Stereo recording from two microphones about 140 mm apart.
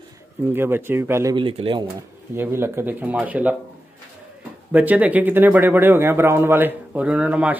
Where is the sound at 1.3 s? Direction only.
35° right (ahead or behind).